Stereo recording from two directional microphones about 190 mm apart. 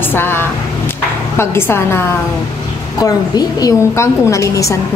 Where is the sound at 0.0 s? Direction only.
10° left (ahead or behind).